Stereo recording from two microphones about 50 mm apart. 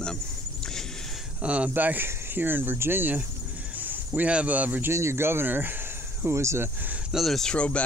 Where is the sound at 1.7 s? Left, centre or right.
Right.